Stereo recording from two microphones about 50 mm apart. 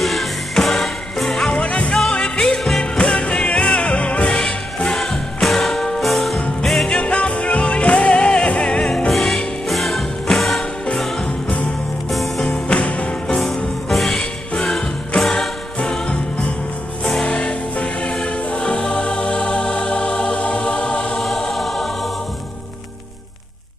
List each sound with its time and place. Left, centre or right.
0.0 s music: centre
1.5 s music: left
4.8 s music: centre
6.9 s music: left
9.1 s music: centre
12.4 s music: centre
13.3 s music: centre
18.2 s choir: centre
21.2 s choir: centre